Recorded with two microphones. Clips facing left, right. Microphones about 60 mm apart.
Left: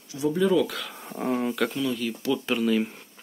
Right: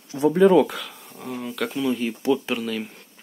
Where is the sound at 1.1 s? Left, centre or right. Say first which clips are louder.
Left 6 dB; left.